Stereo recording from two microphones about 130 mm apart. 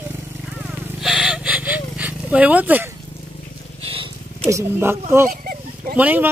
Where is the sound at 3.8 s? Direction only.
45° right (ahead or behind).